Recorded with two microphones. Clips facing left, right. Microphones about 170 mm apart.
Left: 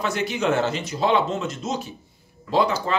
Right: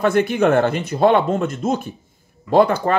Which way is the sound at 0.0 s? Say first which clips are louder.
Right 8 dB; 55° right (ahead or behind).